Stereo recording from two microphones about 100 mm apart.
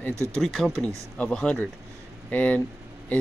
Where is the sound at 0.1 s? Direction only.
30° right (ahead or behind).